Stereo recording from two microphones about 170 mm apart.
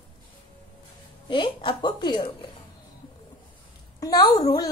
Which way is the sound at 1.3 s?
30° left (ahead or behind).